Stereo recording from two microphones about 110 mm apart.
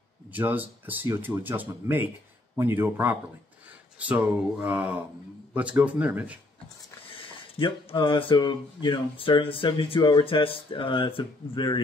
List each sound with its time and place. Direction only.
0.3 s speech: 15° right (ahead or behind)
7.2 s speech: 50° left (ahead or behind)